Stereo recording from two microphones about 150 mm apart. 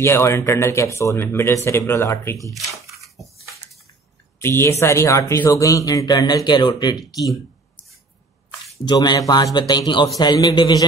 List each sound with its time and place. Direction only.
0.0 s speech: 20° left (ahead or behind)
2.5 s a sound: centre (ahead or behind)
4.4 s speech: 15° left (ahead or behind)
8.8 s speech: 25° left (ahead or behind)